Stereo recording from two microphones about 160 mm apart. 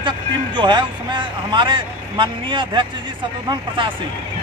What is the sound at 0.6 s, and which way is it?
Speech, 30° right (ahead or behind).